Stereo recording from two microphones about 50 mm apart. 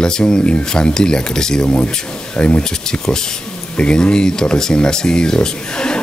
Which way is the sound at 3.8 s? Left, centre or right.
Centre.